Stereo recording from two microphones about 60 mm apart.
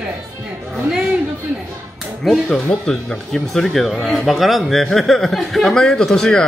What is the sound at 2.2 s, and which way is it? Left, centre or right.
A man's voice, centre.